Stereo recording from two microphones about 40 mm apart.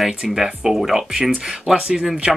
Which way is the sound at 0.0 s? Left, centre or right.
Centre.